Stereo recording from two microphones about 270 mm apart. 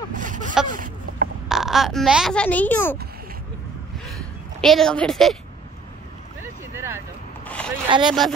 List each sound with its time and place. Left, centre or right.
0.1 s a sound: right
1.5 s a child's voice: centre
4.6 s a child's voice: centre
6.4 s boat: centre
7.4 s a sound: centre
7.9 s speech: centre